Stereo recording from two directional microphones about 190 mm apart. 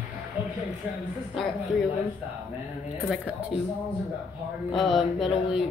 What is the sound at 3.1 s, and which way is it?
Speech, 5° right (ahead or behind).